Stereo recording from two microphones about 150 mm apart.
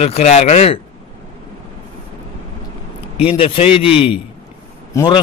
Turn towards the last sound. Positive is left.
turn(degrees=20)  # may be behind; listen again after turning